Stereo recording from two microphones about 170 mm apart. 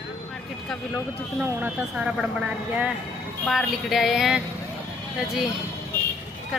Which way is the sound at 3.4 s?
5° left (ahead or behind).